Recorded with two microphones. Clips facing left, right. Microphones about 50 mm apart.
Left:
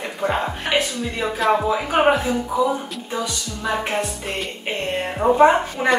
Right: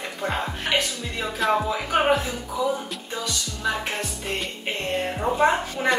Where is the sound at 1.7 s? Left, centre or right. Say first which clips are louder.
Left 4 dB; centre.